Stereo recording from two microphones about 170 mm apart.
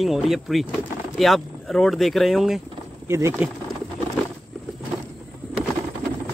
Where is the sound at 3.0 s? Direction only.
15° right (ahead or behind).